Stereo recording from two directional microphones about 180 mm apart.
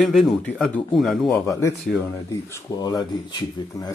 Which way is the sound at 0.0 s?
Centre (ahead or behind).